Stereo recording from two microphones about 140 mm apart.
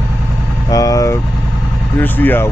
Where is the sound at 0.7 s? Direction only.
25° left (ahead or behind).